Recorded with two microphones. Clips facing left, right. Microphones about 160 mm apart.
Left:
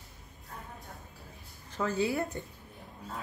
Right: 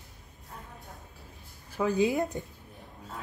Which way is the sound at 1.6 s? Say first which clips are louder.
Right 4 dB; 15° right (ahead or behind).